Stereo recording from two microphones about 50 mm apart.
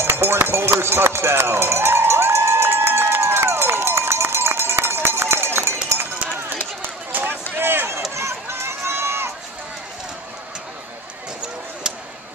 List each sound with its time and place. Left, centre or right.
0.0 s run: right
6.8 s a sound: right
7.5 s run: right
8.1 s run: right